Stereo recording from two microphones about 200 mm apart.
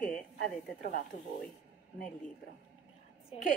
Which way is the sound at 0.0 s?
45° left (ahead or behind).